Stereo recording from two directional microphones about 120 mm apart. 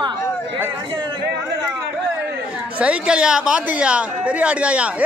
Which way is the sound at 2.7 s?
10° right (ahead or behind).